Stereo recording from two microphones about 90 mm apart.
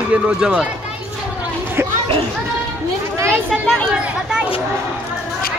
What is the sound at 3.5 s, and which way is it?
Chatter, 10° left (ahead or behind).